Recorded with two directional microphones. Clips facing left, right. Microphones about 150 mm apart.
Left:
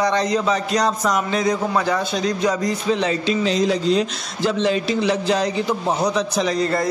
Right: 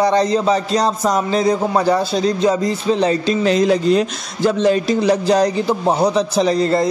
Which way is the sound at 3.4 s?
55° right (ahead or behind).